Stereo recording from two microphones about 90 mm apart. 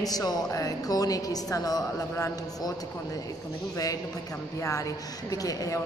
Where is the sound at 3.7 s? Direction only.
40° left (ahead or behind).